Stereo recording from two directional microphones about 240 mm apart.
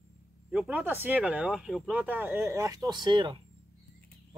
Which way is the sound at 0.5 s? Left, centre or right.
Centre.